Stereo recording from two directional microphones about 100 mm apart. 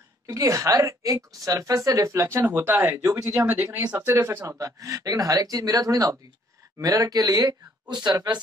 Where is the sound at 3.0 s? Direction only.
35° right (ahead or behind).